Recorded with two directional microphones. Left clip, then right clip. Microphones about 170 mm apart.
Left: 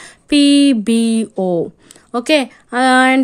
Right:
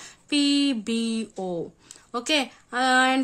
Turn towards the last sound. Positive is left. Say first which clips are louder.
# left 9 dB
turn(degrees=45)  # may be behind; listen again after turning